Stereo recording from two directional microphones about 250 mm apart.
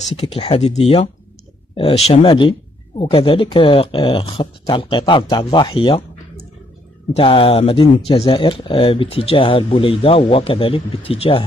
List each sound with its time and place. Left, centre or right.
0.1 s speech: left
7.2 s speech: left